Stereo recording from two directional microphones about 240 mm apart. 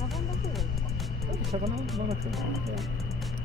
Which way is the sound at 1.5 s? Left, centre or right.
Right.